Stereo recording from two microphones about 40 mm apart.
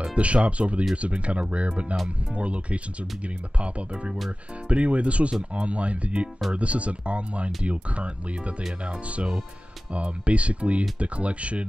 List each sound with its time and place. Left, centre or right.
0.0 s speech: right